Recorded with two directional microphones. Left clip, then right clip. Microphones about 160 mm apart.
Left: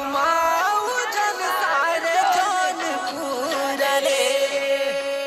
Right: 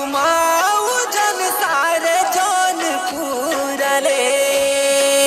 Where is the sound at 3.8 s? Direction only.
35° right (ahead or behind); by 5.2 s 90° right.